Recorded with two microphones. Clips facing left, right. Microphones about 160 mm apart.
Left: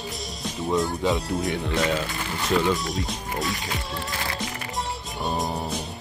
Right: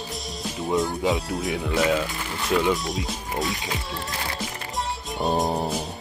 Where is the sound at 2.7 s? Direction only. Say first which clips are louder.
Even; centre (ahead or behind).